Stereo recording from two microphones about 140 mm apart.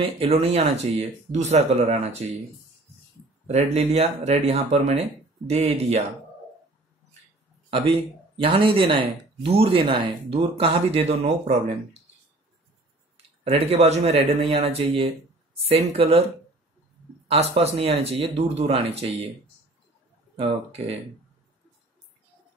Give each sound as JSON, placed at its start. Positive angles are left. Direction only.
{"t": 0.0, "sound": "speech", "side_deg": -45}
{"t": 3.4, "sound": "speech", "side_deg": -50}
{"t": 7.7, "sound": "speech", "side_deg": -40}
{"t": 13.4, "sound": "speech", "side_deg": -45}
{"t": 17.3, "sound": "speech", "side_deg": -50}
{"t": 20.3, "sound": "speech", "side_deg": -45}